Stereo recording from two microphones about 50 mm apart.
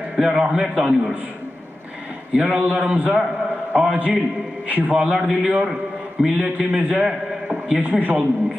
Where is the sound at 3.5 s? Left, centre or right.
Centre.